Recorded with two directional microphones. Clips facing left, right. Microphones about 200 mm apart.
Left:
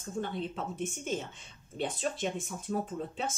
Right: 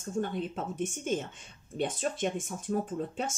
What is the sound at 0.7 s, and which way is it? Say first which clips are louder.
Speech: right 5 dB; 50° right (ahead or behind).